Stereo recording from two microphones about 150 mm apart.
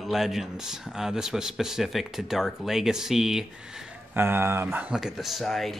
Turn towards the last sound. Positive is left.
turn(degrees=0)  # may be behind; listen again after turning